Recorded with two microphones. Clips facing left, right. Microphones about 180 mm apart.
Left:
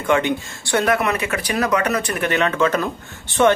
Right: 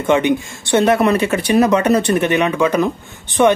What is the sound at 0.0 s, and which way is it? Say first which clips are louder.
Speech: right 4 dB; 20° right (ahead or behind).